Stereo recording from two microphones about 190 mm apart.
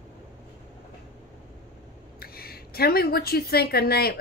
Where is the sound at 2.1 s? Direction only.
55° left (ahead or behind).